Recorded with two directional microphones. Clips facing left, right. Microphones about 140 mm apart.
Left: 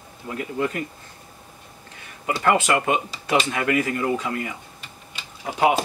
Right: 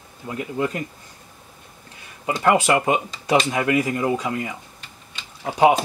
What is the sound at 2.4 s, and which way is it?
Speech, 15° right (ahead or behind).